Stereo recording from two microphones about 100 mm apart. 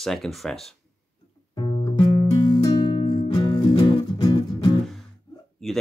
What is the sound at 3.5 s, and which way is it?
Music, 55° left (ahead or behind).